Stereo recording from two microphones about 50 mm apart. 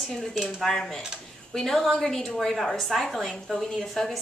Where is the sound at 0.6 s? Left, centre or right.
Centre.